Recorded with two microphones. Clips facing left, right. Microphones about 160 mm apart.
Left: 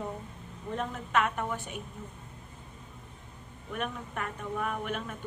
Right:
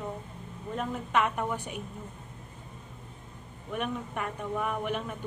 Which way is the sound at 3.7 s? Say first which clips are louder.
Right 3 dB; 5° right (ahead or behind).